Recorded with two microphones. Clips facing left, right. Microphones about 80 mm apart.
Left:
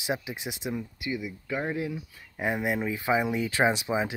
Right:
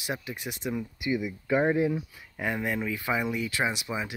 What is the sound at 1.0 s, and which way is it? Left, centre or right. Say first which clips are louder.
Speech: right 4 dB; right.